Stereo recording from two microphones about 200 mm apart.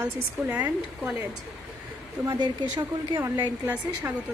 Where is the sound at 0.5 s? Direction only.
10° right (ahead or behind).